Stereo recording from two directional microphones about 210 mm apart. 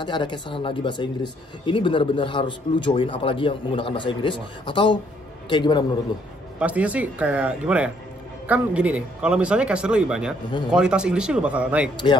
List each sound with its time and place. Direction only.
0.0 s speech: 20° left (ahead or behind)
6.6 s a man's voice: 5° right (ahead or behind)